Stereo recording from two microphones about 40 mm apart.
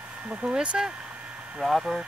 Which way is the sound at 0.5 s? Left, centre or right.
Right.